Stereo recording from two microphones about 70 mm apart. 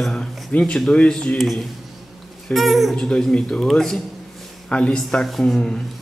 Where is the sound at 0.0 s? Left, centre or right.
Centre.